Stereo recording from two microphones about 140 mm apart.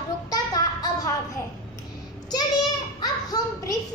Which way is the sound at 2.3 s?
30° left (ahead or behind).